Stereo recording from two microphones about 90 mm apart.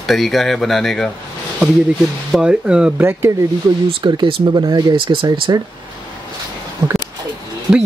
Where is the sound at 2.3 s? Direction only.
10° right (ahead or behind).